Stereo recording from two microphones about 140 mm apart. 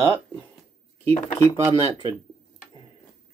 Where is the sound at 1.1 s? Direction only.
50° left (ahead or behind).